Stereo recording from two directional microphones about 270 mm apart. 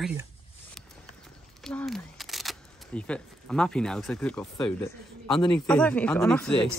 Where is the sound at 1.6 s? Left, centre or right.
Centre.